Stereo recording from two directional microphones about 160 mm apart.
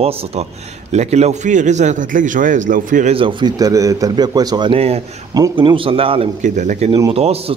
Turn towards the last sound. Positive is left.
turn(degrees=-40)  # may be behind; listen again after turning